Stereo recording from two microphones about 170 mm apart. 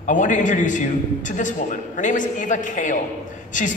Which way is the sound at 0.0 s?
50° left (ahead or behind).